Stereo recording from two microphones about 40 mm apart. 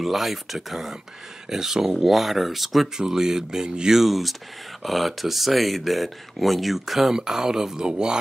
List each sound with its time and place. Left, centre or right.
0.0 s speech: centre
3.0 s speech: centre
4.0 s speech: centre; by 8.2 s right